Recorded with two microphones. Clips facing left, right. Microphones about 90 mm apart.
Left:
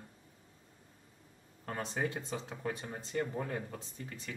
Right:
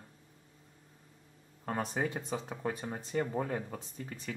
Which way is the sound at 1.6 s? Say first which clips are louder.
Right 3 dB; 15° right (ahead or behind).